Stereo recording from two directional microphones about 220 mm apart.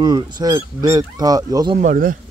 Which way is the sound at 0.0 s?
20° right (ahead or behind).